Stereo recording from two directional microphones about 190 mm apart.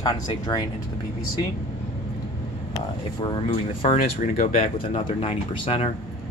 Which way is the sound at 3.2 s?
25° left (ahead or behind).